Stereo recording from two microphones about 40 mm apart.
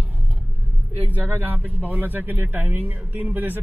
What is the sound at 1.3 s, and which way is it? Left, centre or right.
Speech, right.